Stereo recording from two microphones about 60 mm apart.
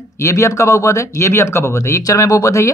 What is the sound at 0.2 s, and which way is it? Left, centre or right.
Speech, left.